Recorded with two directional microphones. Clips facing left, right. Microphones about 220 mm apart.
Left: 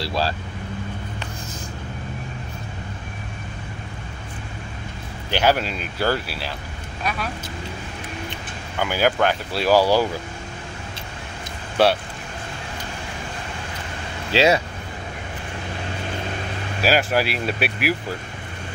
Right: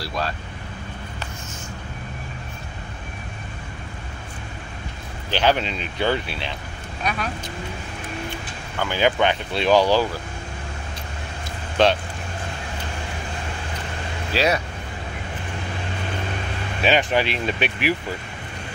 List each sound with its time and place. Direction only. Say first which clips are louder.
0.0 s speech: left 3 dB; 30° left (ahead or behind)
5.3 s speech: left 1 dB; 10° left (ahead or behind)
8.3 s speech: right 1 dB; 10° left (ahead or behind)
11.8 s speech: even; 10° left (ahead or behind)
14.3 s speech: left 4 dB; 25° left (ahead or behind)
16.8 s speech: even; 5° left (ahead or behind)